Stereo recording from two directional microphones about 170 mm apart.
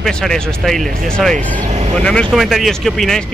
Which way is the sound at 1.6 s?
40° right (ahead or behind).